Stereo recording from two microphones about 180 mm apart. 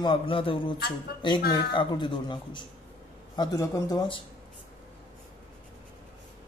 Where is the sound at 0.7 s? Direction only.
60° left (ahead or behind).